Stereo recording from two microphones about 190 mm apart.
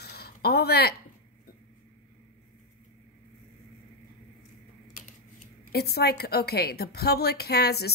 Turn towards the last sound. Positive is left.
turn(degrees=55)  # may be behind; listen again after turning